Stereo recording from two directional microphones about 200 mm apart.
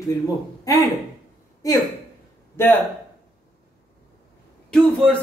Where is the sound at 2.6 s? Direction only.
10° left (ahead or behind).